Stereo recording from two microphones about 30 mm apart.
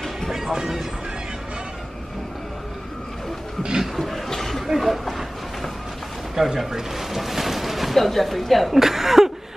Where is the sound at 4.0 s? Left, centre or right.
Centre.